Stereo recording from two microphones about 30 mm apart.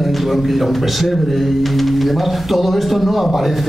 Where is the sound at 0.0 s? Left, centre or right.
Centre.